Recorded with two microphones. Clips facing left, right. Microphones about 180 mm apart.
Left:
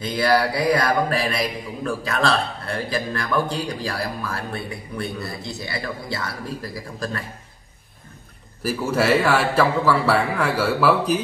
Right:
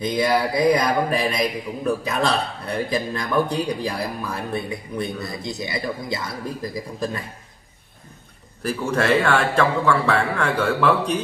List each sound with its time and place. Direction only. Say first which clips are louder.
0.0 s a man's voice: even; 15° right (ahead or behind)
8.6 s a man's voice: left 1 dB; 5° left (ahead or behind)